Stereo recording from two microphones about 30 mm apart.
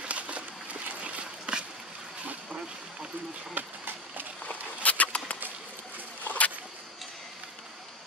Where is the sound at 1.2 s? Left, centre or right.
Right.